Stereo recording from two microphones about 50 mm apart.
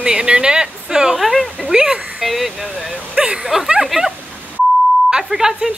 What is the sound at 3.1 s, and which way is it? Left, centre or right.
Speech, centre.